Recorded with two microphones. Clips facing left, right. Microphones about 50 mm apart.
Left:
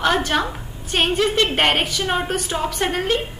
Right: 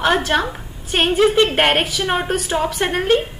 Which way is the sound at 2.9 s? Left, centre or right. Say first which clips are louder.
Right 7 dB; centre.